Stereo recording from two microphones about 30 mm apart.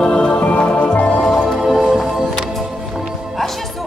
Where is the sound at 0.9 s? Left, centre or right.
Left.